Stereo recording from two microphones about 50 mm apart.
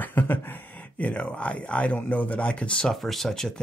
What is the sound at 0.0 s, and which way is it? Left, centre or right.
Speech, left.